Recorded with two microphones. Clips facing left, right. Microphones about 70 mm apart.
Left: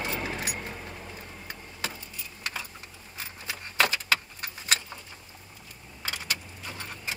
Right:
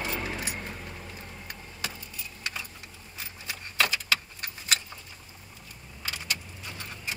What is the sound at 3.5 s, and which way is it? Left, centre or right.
Keys jangling, left.